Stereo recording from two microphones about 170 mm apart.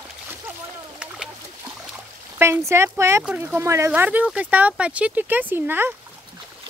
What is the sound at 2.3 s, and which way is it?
Speech, 15° right (ahead or behind).